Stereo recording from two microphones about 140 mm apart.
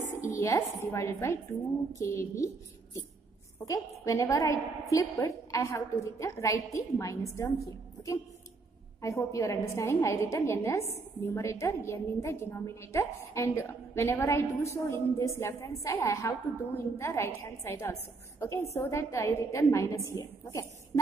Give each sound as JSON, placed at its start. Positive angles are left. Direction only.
{"t": 0.3, "sound": "music", "side_deg": 25}
{"t": 0.9, "sound": "a woman's voice", "side_deg": 20}
{"t": 9.3, "sound": "a woman's voice", "side_deg": 20}